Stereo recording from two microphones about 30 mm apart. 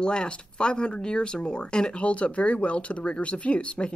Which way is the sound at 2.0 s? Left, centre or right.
Left.